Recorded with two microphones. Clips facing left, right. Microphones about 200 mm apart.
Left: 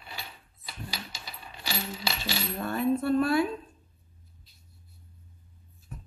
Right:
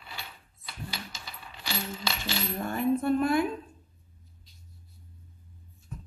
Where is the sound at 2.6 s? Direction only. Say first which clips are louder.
Even; 15° right (ahead or behind).